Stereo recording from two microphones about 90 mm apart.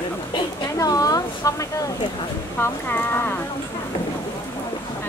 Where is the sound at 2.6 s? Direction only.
30° left (ahead or behind).